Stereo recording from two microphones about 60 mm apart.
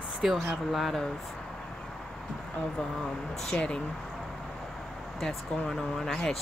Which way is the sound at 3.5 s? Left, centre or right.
Centre.